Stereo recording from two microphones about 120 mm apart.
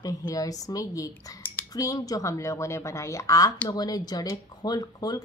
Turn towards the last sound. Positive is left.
turn(degrees=35)  # may be behind; listen again after turning